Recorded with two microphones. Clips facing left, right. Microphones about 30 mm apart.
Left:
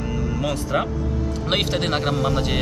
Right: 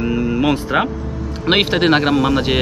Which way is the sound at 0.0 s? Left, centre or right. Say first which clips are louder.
Right 8 dB; right.